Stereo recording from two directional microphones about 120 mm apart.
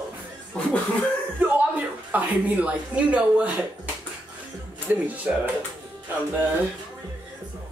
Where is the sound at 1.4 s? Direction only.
15° right (ahead or behind).